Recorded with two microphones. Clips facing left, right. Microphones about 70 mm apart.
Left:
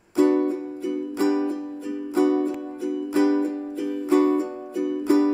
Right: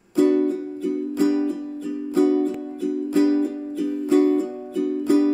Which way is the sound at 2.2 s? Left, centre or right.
Left.